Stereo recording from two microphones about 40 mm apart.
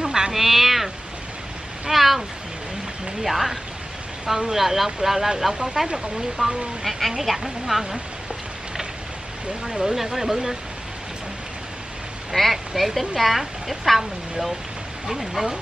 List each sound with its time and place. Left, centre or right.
0.0 s a sound: centre
0.3 s a sound: centre
1.9 s speech: centre
6.8 s speech: centre
9.8 s speech: centre
12.4 s speech: centre